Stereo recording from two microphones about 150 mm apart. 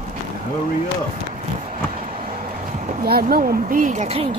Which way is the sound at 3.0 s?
80° right.